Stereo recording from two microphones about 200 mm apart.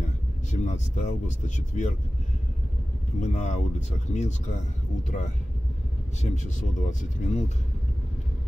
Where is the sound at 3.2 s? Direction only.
35° left (ahead or behind).